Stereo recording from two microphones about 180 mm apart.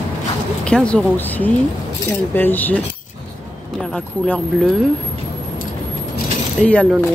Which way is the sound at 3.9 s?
5° left (ahead or behind).